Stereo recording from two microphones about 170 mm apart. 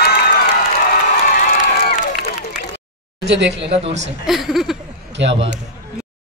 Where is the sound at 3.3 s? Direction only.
90° right.